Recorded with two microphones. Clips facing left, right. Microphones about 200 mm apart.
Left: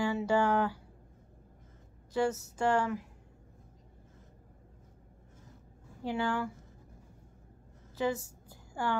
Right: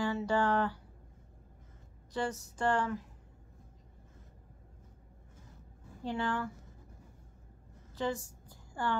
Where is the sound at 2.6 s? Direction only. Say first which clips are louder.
Left 2 dB; 10° left (ahead or behind).